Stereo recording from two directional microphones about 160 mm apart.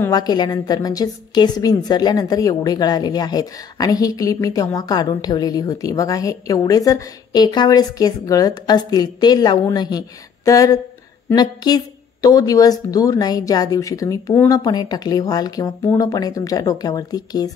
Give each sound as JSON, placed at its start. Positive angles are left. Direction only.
{"t": 0.0, "sound": "a woman's voice", "side_deg": 25}